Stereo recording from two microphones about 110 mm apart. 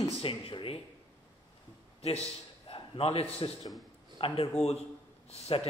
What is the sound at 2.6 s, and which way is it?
A man's voice, 55° left (ahead or behind).